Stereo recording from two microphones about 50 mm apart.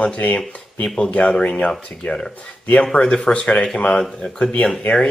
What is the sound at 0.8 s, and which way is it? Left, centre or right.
Speech, centre.